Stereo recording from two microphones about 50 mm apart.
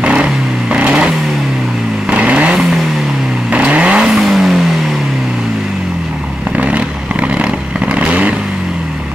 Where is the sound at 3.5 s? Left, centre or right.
Right.